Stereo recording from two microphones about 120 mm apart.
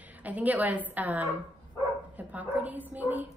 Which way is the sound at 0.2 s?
15° right (ahead or behind).